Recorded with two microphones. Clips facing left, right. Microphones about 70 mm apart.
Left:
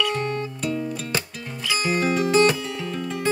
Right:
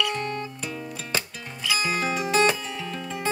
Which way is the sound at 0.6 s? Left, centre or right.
Centre.